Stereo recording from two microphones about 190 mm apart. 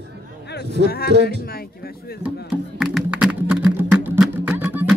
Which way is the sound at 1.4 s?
55° left (ahead or behind).